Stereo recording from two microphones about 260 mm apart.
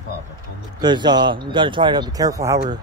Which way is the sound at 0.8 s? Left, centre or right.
Centre.